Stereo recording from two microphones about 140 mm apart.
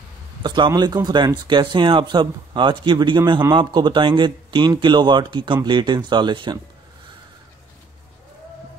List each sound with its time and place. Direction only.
0.4 s speech: 35° right (ahead or behind)